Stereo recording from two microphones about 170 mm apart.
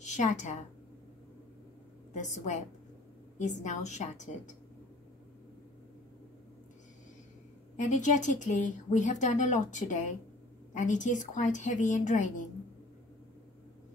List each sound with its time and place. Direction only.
0.0 s a woman's voice: 45° left (ahead or behind)
2.1 s speech: 45° left (ahead or behind)
7.7 s speech: 45° left (ahead or behind)